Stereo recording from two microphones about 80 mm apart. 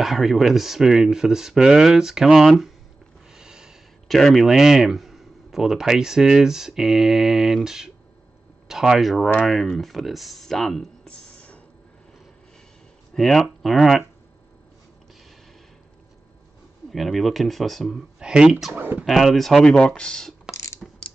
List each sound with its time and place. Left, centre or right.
0.0 s speech: centre
3.3 s a sound: centre
4.2 s speech: centre
13.1 s speech: centre
16.9 s speech: centre
18.7 s speech: right
19.0 s speech: centre
20.5 s beatboxing: left